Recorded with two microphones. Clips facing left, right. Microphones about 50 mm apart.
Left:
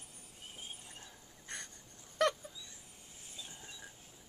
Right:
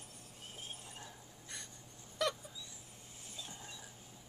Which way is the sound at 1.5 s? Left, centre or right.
Left.